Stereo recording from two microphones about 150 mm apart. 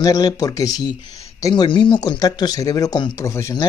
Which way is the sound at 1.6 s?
35° left (ahead or behind).